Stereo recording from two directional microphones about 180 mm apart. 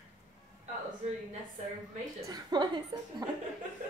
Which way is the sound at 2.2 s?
25° right (ahead or behind).